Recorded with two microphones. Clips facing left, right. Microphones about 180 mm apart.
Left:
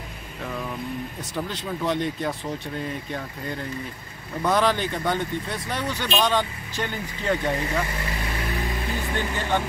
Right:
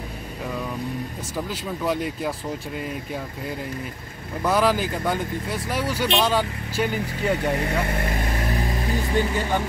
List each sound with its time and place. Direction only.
1.3 s speech: 5° right (ahead or behind)
7.6 s vehicle: 55° right (ahead or behind); by 8.6 s 40° right (ahead or behind)
9.1 s speech: 10° right (ahead or behind)